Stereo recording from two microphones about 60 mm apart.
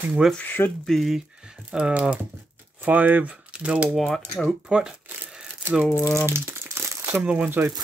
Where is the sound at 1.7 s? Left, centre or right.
Centre.